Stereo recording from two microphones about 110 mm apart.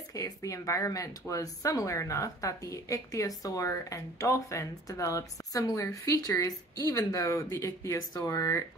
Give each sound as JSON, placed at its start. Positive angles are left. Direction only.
{"t": 0.1, "sound": "speech", "side_deg": 30}